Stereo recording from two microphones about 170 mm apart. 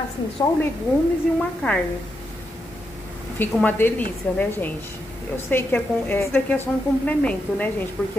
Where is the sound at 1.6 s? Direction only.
5° left (ahead or behind).